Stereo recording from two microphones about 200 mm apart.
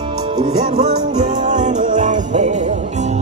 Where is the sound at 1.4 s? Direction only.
35° right (ahead or behind).